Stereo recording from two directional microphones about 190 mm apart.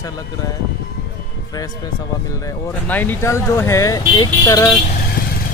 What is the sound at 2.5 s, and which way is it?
Speech, 10° left (ahead or behind).